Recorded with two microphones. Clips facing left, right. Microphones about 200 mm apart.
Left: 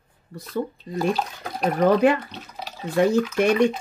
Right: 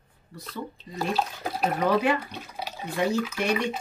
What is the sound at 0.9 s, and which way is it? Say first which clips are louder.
Speech: left 4 dB; 5° right (ahead or behind).